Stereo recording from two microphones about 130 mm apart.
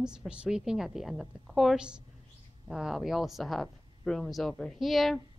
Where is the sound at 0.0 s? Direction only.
5° right (ahead or behind).